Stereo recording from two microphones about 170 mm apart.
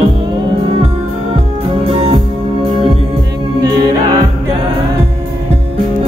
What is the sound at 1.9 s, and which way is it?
Music, 35° right (ahead or behind).